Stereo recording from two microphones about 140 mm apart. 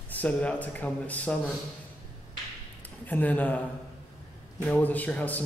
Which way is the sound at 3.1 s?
10° left (ahead or behind).